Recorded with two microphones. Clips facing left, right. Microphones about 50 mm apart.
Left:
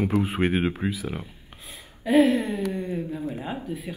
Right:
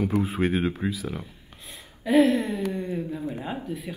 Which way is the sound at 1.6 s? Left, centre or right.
Centre.